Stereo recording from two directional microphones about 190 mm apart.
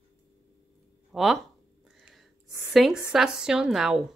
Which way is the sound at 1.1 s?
Centre (ahead or behind).